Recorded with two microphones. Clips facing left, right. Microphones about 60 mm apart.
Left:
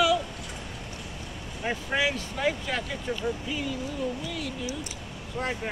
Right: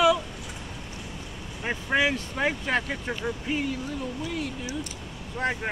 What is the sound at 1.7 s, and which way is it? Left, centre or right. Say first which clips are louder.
Speech: right 3 dB; right.